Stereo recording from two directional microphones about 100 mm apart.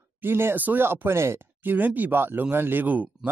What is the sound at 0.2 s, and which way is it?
Speech, 20° right (ahead or behind).